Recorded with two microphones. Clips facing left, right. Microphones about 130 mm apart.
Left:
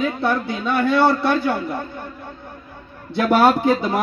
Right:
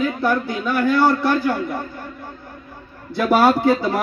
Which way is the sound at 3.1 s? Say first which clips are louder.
Even; 20° left (ahead or behind).